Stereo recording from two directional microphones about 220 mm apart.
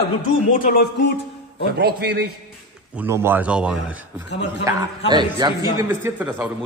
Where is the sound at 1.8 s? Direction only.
45° right (ahead or behind).